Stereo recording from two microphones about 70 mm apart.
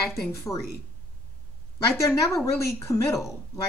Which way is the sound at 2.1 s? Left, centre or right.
Left.